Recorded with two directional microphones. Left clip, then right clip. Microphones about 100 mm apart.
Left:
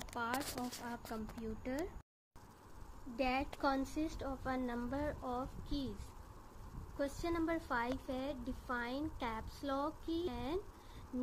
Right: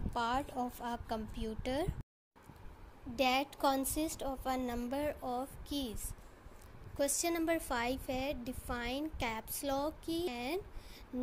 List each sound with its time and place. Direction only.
0.1 s speech: 70° right (ahead or behind)
0.8 s a woman's voice: 90° right; by 1.9 s 75° right (ahead or behind)
3.2 s a woman's voice: 60° right (ahead or behind)
3.4 s a woman's voice: 35° right (ahead or behind)
7.0 s a woman's voice: 45° right (ahead or behind)